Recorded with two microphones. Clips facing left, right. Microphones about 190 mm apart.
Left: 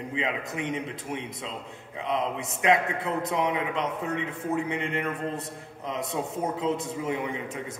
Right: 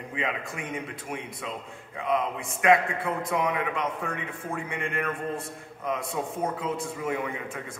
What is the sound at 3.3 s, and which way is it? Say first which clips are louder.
A man's voice: even; 25° left (ahead or behind).